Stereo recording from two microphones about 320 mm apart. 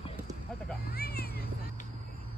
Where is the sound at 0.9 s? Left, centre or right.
Left.